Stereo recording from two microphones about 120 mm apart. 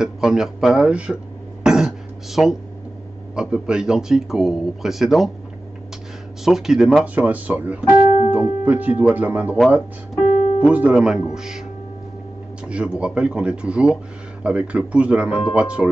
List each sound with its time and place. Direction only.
0.0 s speech: 5° right (ahead or behind)
1.6 s throat clearing: 5° right (ahead or behind)
3.3 s speech: 5° right (ahead or behind)
6.4 s speech: 5° right (ahead or behind)
7.2 s speech: 10° right (ahead or behind)
10.6 s speech: 10° right (ahead or behind)
12.6 s speech: 10° right (ahead or behind)